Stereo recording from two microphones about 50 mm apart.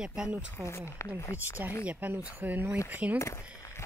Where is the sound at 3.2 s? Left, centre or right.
Left.